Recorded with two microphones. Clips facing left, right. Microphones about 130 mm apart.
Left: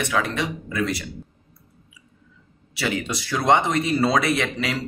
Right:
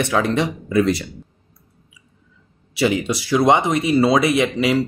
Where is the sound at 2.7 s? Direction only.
20° right (ahead or behind).